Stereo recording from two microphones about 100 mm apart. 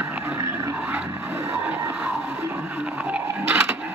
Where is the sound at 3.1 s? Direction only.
10° right (ahead or behind).